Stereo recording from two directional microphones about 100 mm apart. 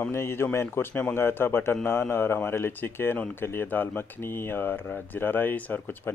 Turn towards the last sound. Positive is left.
turn(degrees=20)  # may be behind; listen again after turning